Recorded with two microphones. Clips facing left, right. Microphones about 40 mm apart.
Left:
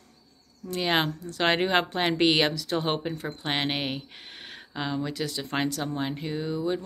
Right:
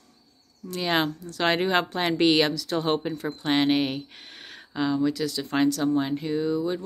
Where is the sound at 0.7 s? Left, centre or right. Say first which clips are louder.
Right 1 dB; centre.